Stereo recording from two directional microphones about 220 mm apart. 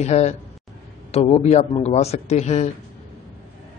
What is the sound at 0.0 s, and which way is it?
A man's voice, 30° left (ahead or behind).